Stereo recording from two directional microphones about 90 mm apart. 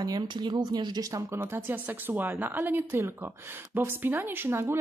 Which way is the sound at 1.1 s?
30° right (ahead or behind).